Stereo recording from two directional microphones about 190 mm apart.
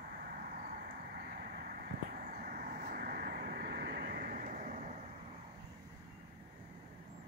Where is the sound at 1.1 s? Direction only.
50° right (ahead or behind).